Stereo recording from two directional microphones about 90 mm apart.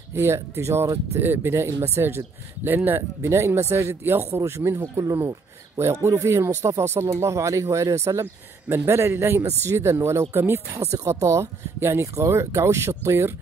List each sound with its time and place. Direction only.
0.1 s speech: 30° right (ahead or behind)